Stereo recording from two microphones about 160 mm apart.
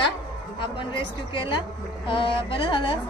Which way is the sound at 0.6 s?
30° left (ahead or behind).